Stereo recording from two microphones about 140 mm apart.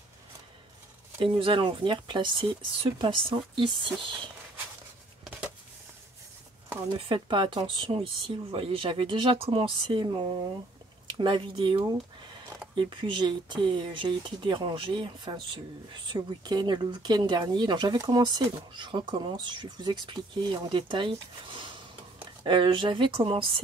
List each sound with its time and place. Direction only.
1.2 s speech: 35° right (ahead or behind)
7.1 s speech: 35° right (ahead or behind)